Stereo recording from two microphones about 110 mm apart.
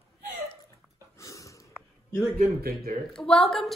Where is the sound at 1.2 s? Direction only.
30° left (ahead or behind).